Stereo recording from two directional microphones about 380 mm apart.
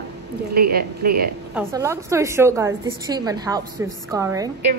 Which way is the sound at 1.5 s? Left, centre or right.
Centre.